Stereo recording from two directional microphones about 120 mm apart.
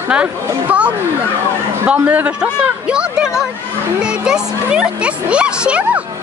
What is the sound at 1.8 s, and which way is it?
Speech, 10° right (ahead or behind).